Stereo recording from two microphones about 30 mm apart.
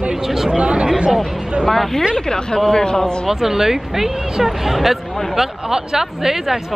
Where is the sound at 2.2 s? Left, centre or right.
Left.